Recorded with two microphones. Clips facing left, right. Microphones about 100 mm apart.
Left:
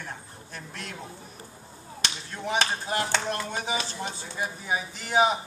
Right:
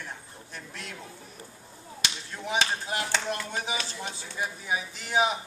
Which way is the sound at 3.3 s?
30° left (ahead or behind).